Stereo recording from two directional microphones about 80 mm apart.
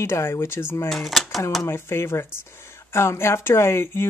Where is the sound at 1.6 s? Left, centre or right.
Left.